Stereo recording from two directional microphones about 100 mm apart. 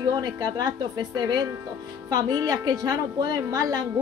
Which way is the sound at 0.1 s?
45° right (ahead or behind).